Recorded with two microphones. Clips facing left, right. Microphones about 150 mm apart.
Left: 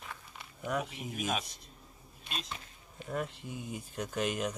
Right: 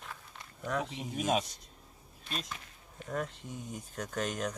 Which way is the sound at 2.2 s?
20° left (ahead or behind).